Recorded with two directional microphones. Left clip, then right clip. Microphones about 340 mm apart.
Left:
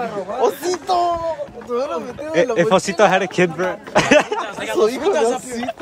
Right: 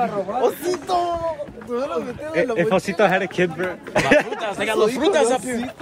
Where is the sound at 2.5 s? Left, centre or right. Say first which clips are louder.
Left 4 dB; centre.